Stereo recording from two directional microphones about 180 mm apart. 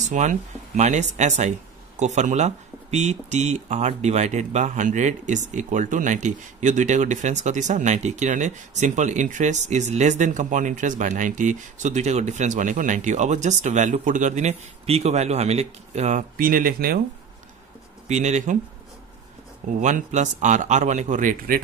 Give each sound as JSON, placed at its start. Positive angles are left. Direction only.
{"t": 0.0, "sound": "speech", "side_deg": -40}
{"t": 18.0, "sound": "speech", "side_deg": -40}
{"t": 19.8, "sound": "speech", "side_deg": -40}